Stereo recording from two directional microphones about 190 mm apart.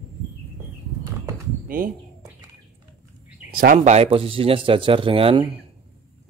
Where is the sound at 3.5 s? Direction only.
45° right (ahead or behind); by 5.5 s 30° right (ahead or behind).